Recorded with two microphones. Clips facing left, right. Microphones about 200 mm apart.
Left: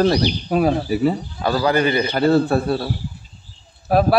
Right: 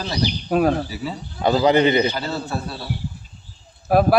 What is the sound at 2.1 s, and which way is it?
Speech, 55° left (ahead or behind).